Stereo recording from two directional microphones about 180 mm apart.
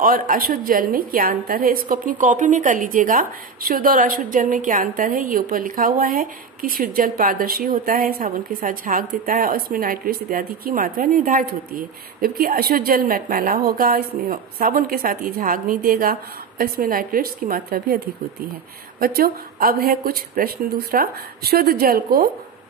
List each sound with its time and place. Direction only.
0.0 s a woman's voice: 50° right (ahead or behind)
18.9 s speech: 55° right (ahead or behind)